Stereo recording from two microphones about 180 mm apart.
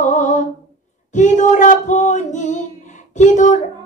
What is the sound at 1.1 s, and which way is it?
Female singing, 45° left (ahead or behind).